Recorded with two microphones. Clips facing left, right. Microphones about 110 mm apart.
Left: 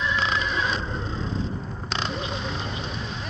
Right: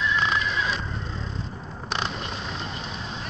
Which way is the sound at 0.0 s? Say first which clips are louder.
Right 1 dB; 30° left (ahead or behind).